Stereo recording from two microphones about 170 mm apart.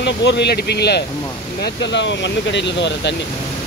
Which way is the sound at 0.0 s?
90° left.